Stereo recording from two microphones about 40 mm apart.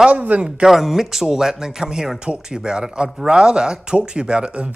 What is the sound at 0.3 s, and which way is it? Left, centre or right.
Speech, right.